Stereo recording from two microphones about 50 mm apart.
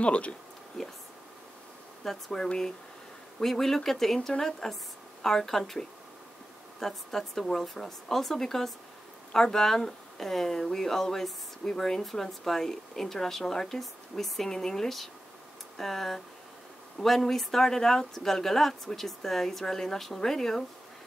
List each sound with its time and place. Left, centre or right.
0.0 s speech: left
0.8 s speech: centre
2.0 s speech: centre